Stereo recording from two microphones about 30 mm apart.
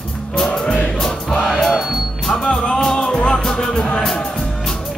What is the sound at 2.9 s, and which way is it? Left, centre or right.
Music, left.